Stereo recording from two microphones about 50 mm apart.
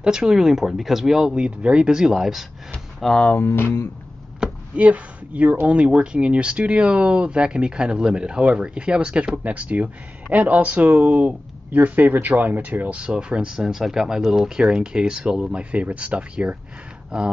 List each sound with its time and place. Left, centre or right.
0.0 s speech: centre
3.0 s speech: centre
3.4 s speech: left
4.4 s a sound: centre
4.7 s speech: right
13.0 s speech: centre